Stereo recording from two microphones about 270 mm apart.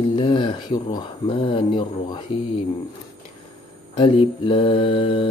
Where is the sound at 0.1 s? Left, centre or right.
Centre.